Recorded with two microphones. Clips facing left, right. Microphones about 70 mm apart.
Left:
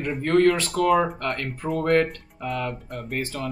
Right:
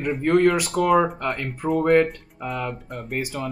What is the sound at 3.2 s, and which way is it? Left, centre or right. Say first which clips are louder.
Speech: right 1 dB; centre.